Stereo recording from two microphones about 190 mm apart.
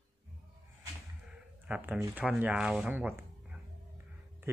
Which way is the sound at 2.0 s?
5° right (ahead or behind).